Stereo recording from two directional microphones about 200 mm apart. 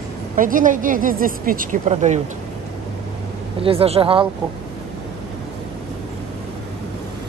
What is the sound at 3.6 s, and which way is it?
Speech, 30° right (ahead or behind).